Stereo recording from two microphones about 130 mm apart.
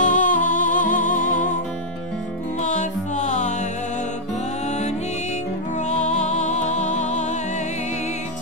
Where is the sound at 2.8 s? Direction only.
70° left (ahead or behind).